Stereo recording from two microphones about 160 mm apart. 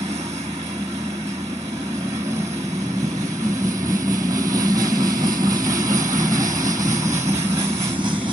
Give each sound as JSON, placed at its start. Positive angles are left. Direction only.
{"t": 4.1, "sound": "vehicle", "side_deg": -20}